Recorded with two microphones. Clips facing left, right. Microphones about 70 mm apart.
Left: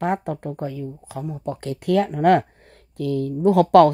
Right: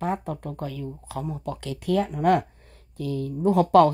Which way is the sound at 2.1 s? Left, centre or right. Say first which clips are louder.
Left 4 dB; left.